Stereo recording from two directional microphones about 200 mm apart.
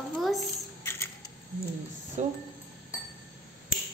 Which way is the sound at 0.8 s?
10° left (ahead or behind).